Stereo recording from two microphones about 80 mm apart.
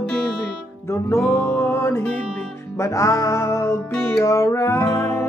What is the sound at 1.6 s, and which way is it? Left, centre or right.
Music, left.